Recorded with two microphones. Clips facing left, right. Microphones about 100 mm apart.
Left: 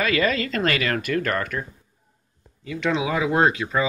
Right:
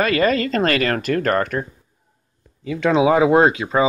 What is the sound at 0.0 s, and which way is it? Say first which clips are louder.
Speech: right 5 dB; 50° right (ahead or behind).